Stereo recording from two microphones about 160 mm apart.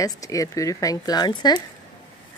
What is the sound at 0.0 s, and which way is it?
Speech, 20° left (ahead or behind).